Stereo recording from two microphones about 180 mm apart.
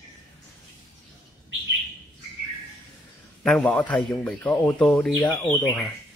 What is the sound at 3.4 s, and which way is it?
A man's voice, 5° left (ahead or behind).